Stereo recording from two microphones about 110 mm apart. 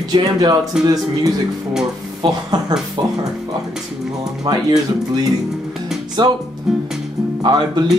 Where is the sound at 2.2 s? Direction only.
45° right (ahead or behind).